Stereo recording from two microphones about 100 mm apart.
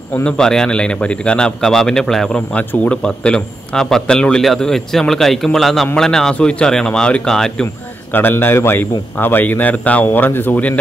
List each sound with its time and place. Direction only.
0.2 s a man's voice: 10° left (ahead or behind)
2.5 s a man's voice: 15° left (ahead or behind)
8.1 s a man's voice: 20° left (ahead or behind)